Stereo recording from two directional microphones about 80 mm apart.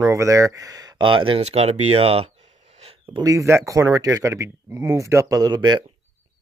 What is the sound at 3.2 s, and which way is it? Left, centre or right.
Speech, right.